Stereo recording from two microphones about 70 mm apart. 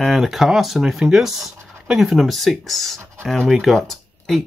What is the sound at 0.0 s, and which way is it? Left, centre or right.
Speech, centre.